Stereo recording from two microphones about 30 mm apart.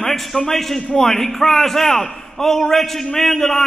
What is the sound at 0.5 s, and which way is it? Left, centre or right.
A man's voice, centre.